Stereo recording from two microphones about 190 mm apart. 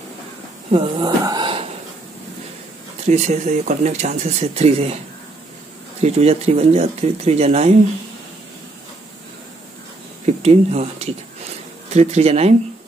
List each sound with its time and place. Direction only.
0.7 s speech: 30° right (ahead or behind)
3.1 s speech: 35° right (ahead or behind)
5.9 s speech: 35° right (ahead or behind)
10.2 s speech: 35° right (ahead or behind)